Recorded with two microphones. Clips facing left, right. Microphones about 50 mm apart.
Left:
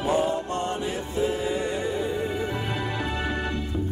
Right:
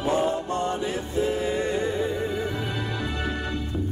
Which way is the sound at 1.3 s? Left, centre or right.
Right.